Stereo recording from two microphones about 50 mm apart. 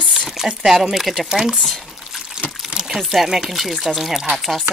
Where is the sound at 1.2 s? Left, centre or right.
Centre.